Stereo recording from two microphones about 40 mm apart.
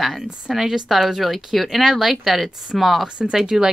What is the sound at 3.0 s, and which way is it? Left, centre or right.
Speech, right.